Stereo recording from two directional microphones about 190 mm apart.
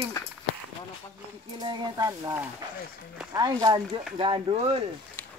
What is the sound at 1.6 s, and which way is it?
Speech, 20° right (ahead or behind).